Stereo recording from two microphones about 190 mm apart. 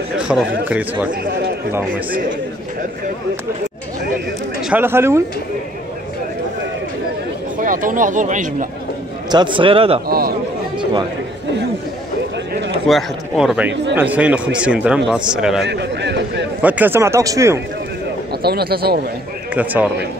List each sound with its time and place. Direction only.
0.2 s a man's voice: 5° right (ahead or behind)
1.7 s a man's voice: 10° right (ahead or behind)
4.6 s speech: 5° right (ahead or behind)
7.5 s speech: 45° right (ahead or behind)
9.3 s a man's voice: 25° right (ahead or behind)
10.0 s a man's voice: 50° right (ahead or behind)
12.8 s a man's voice: centre (ahead or behind)
15.6 s a man's voice: 60° right (ahead or behind)
16.6 s a man's voice: 10° right (ahead or behind)
18.4 s a man's voice: 55° right (ahead or behind)
19.5 s a man's voice: 10° right (ahead or behind)